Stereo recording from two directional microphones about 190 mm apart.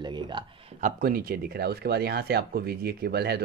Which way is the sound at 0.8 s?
50° right (ahead or behind).